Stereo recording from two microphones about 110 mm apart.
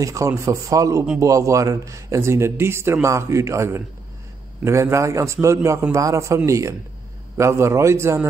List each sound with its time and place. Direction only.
0.0 s a man's voice: 30° right (ahead or behind)